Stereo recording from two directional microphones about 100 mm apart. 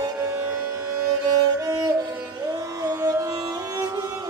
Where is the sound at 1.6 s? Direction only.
40° right (ahead or behind).